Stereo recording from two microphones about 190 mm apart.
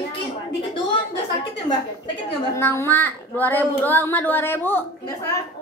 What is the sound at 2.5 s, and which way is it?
A woman's voice, 15° left (ahead or behind).